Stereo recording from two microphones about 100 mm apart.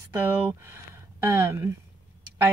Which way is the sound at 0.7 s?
25° right (ahead or behind).